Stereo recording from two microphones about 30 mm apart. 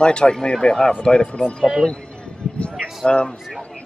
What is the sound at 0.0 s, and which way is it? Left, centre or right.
Speech, left.